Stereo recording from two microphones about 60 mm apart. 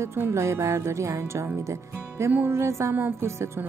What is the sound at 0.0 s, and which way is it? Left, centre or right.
Speech, right.